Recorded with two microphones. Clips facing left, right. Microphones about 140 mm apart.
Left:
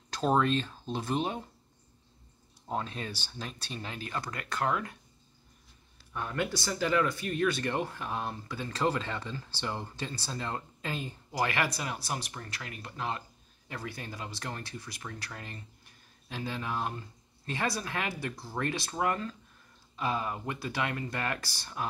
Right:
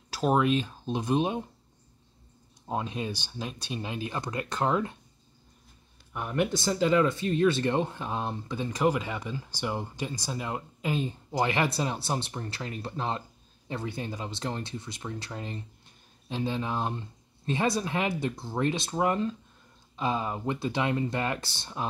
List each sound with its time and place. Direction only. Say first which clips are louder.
0.1 s speech: right 2 dB; 10° right (ahead or behind)
2.6 s speech: right 3 dB; 15° right (ahead or behind)
6.1 s speech: right 5 dB; 15° right (ahead or behind)